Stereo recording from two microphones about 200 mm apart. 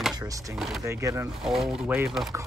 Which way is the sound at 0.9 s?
15° right (ahead or behind).